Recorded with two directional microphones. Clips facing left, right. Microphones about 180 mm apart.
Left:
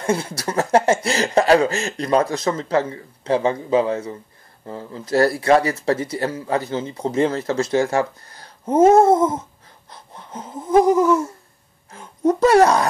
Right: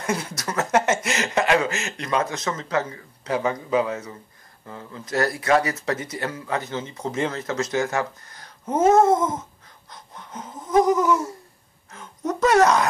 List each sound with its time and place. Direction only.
0.0 s speech: 30° left (ahead or behind)
9.8 s a sound: 30° left (ahead or behind)
11.9 s speech: 30° left (ahead or behind)